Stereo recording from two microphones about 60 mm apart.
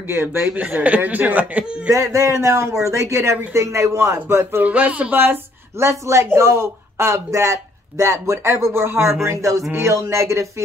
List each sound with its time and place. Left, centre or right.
0.1 s speech: right
0.7 s speech: right
1.9 s speech: right
4.6 s speech: right
5.8 s speech: right
8.8 s speech: right
9.2 s speech: right
9.8 s speech: right